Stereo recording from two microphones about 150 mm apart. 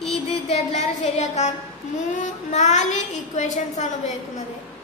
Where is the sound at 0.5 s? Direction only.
45° left (ahead or behind).